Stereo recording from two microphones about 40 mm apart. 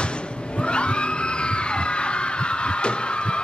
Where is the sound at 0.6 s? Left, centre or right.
Left.